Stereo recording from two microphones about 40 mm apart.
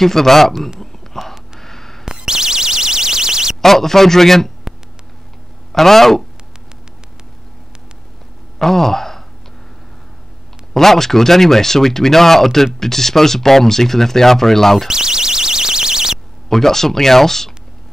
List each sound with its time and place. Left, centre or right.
0.0 s speech: centre
0.7 s a sound: centre
2.2 s buzzer: centre
3.6 s speech: centre
5.7 s speech: centre
8.5 s speech: centre
10.7 s speech: centre
14.9 s alarm: centre
16.4 s speech: centre